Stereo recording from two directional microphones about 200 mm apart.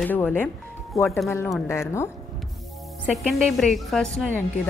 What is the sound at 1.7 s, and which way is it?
Speech, 15° left (ahead or behind).